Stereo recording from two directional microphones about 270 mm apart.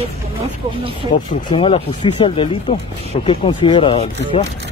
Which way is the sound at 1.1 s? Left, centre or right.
Centre.